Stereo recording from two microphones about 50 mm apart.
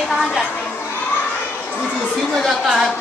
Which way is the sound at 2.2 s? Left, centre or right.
Centre.